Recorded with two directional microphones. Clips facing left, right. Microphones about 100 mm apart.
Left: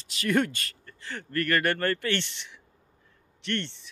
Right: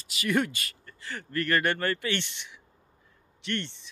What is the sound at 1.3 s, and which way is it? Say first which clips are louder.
Speech: left 1 dB; 20° right (ahead or behind).